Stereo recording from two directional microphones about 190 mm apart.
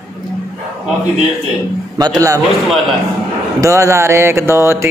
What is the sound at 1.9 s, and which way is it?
Speech, 20° right (ahead or behind).